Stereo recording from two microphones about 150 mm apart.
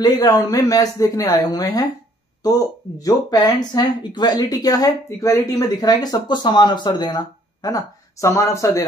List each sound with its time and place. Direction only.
0.0 s speech: 25° left (ahead or behind)